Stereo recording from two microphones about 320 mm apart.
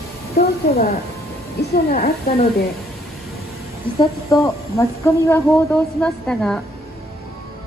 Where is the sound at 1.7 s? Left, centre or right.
Left.